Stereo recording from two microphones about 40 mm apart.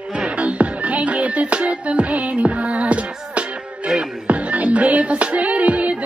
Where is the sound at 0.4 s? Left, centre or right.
Right.